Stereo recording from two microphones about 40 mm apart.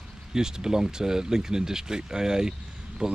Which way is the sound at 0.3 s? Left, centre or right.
Centre.